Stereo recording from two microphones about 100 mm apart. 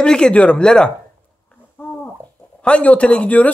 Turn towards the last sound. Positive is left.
turn(degrees=15)  # may be behind; listen again after turning